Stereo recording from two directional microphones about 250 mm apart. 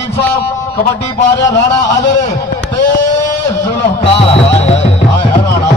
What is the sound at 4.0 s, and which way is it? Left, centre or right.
Speech, left.